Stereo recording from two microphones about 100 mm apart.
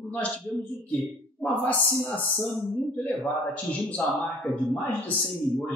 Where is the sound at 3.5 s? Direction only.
15° left (ahead or behind).